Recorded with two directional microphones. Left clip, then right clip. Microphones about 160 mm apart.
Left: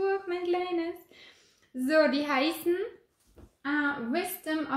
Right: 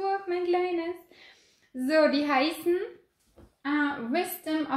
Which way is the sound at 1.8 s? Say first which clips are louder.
Right 1 dB; 25° left (ahead or behind).